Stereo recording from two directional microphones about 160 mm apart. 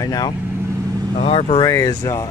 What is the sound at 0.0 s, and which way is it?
Speech, 25° left (ahead or behind).